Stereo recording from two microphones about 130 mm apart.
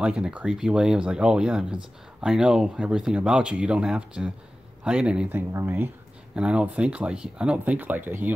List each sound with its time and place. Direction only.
0.0 s speech: 5° right (ahead or behind)
5.5 s speech: 20° right (ahead or behind)
6.3 s speech: 10° right (ahead or behind)